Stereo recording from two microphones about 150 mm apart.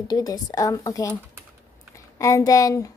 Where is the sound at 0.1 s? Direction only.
25° left (ahead or behind).